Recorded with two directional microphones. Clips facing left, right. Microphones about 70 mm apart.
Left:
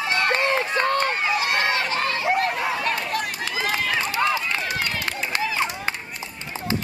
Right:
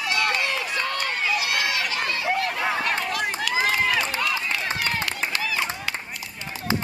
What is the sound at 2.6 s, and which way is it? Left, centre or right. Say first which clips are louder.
Run: even; right.